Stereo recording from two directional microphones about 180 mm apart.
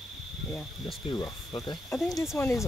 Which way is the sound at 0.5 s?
5° left (ahead or behind).